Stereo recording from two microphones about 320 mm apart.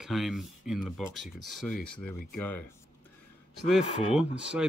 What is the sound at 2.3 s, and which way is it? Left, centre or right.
Speech, left.